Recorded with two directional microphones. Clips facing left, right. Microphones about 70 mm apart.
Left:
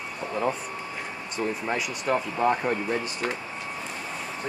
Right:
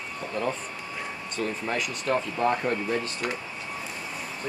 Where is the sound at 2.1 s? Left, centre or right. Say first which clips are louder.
Left 1 dB; centre.